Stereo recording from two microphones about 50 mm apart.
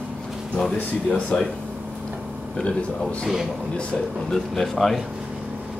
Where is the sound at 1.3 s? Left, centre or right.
Left.